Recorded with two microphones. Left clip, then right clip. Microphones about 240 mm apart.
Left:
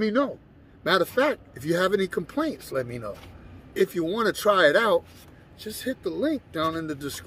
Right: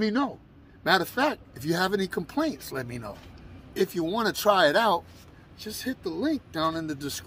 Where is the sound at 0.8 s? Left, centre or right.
Centre.